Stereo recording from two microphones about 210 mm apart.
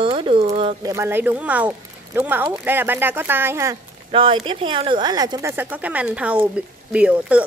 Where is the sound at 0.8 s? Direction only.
10° right (ahead or behind).